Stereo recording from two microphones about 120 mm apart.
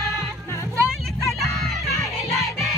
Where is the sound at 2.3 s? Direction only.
Centre (ahead or behind).